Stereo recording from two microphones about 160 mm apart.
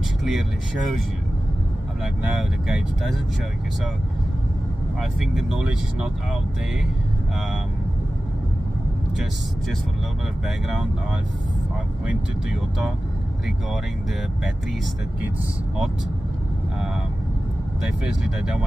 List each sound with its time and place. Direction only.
0.2 s speech: 5° right (ahead or behind)
2.3 s speech: 5° right (ahead or behind)
5.2 s speech: 5° right (ahead or behind)
10.4 s speech: 5° right (ahead or behind)
17.8 s speech: 5° right (ahead or behind)